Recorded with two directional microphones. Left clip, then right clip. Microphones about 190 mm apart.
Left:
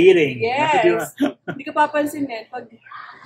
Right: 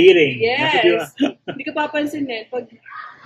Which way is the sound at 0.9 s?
Centre (ahead or behind).